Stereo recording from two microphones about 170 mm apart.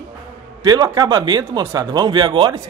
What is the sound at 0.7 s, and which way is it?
A man's voice, 25° right (ahead or behind).